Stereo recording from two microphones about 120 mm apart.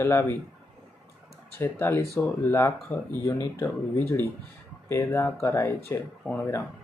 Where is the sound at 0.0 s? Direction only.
20° left (ahead or behind).